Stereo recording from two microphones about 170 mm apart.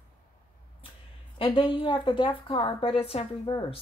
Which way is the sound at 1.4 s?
30° left (ahead or behind).